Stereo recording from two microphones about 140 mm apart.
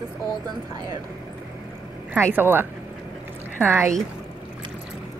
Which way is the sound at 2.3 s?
15° right (ahead or behind).